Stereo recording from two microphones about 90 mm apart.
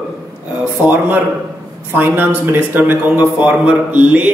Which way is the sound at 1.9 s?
25° right (ahead or behind).